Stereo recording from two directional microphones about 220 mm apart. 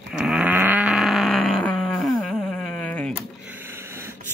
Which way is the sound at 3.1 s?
5° right (ahead or behind).